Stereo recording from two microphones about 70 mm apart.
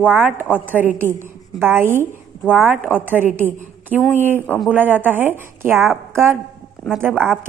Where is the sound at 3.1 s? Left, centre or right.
Right.